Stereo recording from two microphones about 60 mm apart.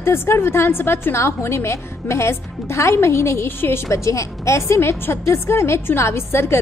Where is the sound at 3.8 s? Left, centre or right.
Left.